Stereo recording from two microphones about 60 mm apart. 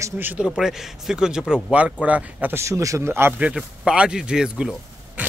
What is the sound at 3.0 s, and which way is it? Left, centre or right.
Speech, right.